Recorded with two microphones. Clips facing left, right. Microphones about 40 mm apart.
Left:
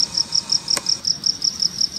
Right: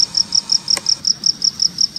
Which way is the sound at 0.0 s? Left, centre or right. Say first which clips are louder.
Right 4 dB; centre.